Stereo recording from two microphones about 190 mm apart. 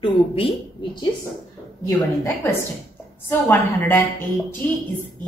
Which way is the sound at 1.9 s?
15° left (ahead or behind).